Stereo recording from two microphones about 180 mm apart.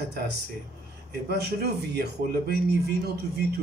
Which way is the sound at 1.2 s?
65° right (ahead or behind).